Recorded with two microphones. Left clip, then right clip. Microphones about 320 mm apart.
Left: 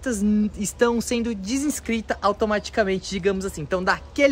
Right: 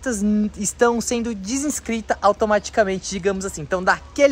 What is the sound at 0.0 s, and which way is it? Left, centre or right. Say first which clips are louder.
Speech: right 2 dB; centre.